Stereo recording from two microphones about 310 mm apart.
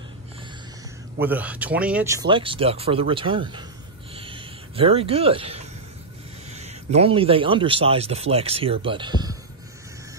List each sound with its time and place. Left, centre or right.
1.2 s a man's voice: centre
4.1 s a sound: centre
6.5 s a man's voice: right